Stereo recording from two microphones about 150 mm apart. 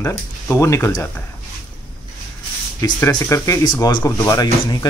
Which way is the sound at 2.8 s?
20° left (ahead or behind).